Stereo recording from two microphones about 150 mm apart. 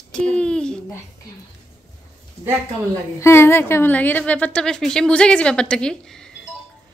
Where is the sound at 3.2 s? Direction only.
15° left (ahead or behind).